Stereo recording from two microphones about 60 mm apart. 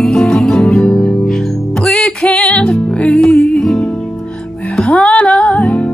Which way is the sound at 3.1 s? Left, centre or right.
Centre.